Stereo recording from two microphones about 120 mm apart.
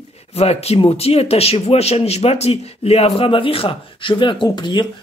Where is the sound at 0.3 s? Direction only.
60° left (ahead or behind).